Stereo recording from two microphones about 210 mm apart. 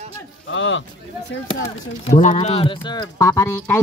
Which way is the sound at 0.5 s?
65° left (ahead or behind).